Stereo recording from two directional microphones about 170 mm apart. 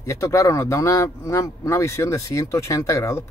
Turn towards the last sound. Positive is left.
turn(degrees=15)  # may be behind; listen again after turning